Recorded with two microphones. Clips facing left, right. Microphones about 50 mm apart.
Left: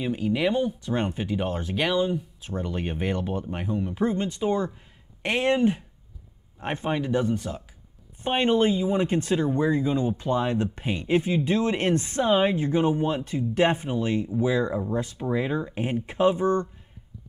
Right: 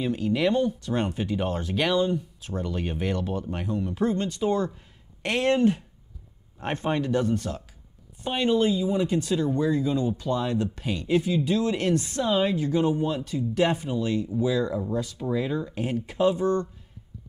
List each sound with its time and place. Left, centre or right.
0.0 s speech: centre
8.2 s speech: left